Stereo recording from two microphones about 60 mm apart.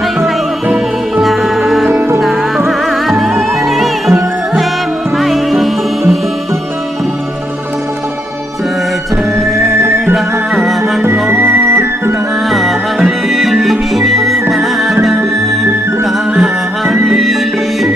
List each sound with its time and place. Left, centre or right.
1.2 s music: centre
9.4 s music: centre
11.2 s music: right
12.4 s music: centre
16.0 s music: centre